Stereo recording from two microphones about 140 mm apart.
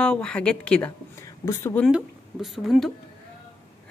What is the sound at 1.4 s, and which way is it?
Speech, 20° left (ahead or behind).